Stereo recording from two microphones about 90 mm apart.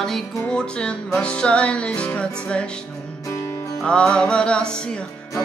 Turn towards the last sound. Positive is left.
turn(degrees=10)  # may be behind; listen again after turning